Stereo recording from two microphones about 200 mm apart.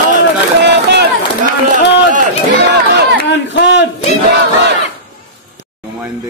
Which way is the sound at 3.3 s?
60° left (ahead or behind).